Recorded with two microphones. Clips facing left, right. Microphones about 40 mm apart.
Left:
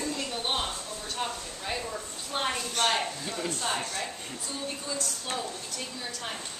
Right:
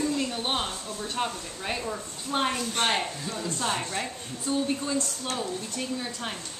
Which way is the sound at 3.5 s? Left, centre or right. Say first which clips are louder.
Right 4 dB; right.